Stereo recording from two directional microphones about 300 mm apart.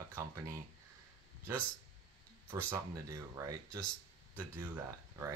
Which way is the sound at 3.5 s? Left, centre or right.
Right.